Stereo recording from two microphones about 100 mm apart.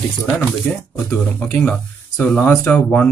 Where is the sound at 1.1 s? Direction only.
10° left (ahead or behind).